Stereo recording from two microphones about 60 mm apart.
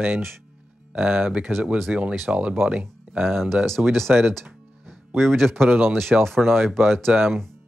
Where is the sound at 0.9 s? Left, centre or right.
Right.